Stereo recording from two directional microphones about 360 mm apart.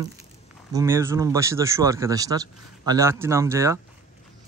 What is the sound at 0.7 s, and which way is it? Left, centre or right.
Speech, centre.